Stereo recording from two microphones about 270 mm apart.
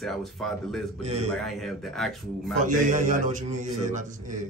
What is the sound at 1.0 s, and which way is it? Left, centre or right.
Speech, right.